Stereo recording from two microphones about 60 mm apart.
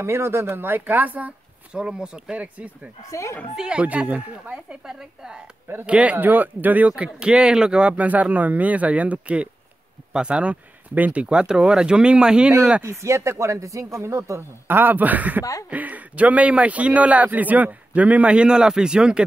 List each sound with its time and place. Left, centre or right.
0.0 s speech: right
1.8 s speech: centre
3.1 s speech: left
3.5 s speech: centre
3.8 s a man's voice: right; by 5.4 s centre
5.9 s a man's voice: right
6.1 s speech: right
6.9 s speech: centre
7.9 s a man's voice: right
12.8 s speech: right
14.7 s a man's voice: right; by 19.2 s centre